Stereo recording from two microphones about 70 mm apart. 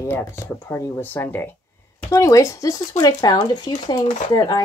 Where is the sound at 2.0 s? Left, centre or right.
Left.